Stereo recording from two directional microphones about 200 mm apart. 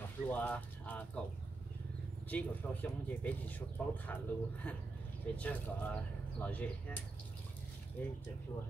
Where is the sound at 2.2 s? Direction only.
10° left (ahead or behind).